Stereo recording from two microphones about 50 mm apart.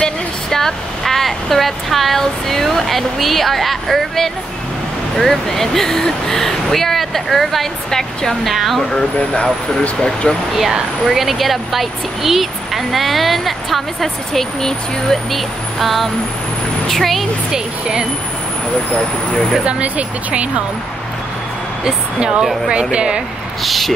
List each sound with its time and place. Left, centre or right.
0.0 s speech: centre
8.9 s speech: left
10.5 s speech: centre
17.5 s speech: centre
19.6 s speech: right
21.8 s speech: centre
23.6 s speech: centre